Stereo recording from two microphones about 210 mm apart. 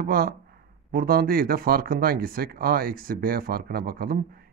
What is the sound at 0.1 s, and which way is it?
Speech, 45° right (ahead or behind).